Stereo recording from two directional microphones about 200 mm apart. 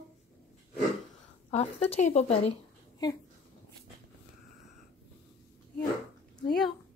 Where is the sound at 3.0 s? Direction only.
20° left (ahead or behind).